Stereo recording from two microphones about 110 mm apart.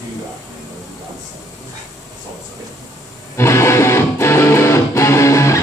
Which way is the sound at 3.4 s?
25° left (ahead or behind).